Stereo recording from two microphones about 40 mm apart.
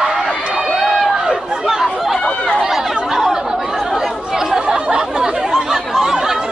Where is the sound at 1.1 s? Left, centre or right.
Centre.